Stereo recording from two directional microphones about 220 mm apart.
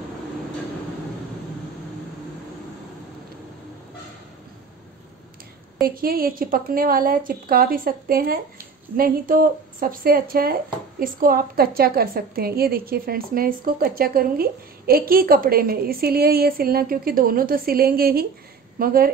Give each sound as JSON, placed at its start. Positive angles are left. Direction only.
{"t": 5.9, "sound": "a woman's voice", "side_deg": -40}